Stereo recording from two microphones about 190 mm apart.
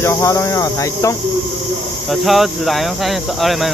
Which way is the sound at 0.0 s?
15° left (ahead or behind).